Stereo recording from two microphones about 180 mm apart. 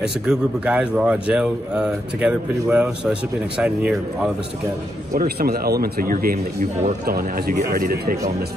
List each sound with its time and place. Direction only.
0.0 s a man's voice: 5° right (ahead or behind)
5.1 s speech: 55° right (ahead or behind)